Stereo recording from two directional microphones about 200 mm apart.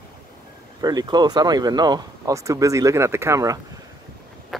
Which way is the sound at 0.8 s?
20° right (ahead or behind).